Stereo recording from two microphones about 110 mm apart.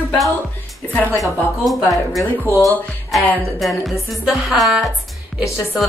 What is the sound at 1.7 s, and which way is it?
A woman's voice, centre (ahead or behind).